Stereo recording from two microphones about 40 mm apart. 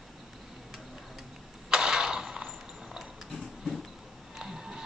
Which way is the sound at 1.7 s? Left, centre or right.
Centre.